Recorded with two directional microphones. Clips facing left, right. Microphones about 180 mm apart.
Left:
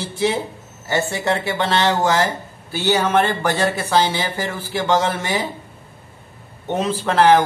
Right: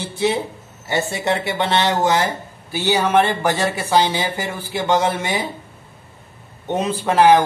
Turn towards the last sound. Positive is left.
turn(degrees=-15)  # may be behind; listen again after turning